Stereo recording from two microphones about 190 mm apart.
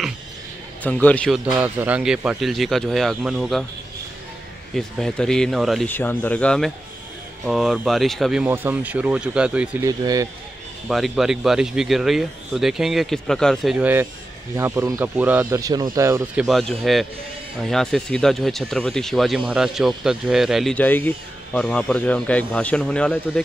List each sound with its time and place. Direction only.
0.8 s speech: 10° left (ahead or behind)
1.4 s speech: 5° right (ahead or behind)
4.7 s speech: 5° left (ahead or behind)
9.8 s speech: 20° right (ahead or behind)
10.9 s speech: centre (ahead or behind)
16.4 s speech: centre (ahead or behind)